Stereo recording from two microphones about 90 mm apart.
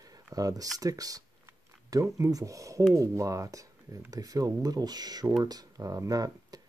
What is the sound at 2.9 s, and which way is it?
Speech, 35° right (ahead or behind).